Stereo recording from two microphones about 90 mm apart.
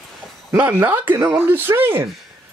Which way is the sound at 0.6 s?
20° right (ahead or behind).